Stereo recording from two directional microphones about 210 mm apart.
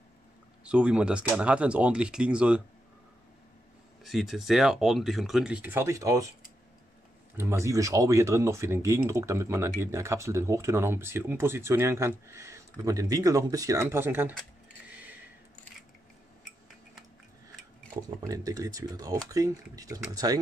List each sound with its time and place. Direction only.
0.7 s speech: 5° right (ahead or behind)
4.0 s speech: centre (ahead or behind)
7.3 s speech: 15° right (ahead or behind)
18.3 s speech: 15° right (ahead or behind)